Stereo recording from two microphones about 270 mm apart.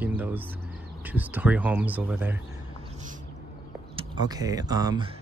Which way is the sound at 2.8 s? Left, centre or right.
Right.